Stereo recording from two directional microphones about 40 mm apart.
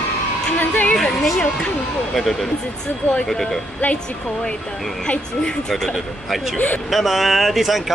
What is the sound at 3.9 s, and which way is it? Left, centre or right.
Speech, centre.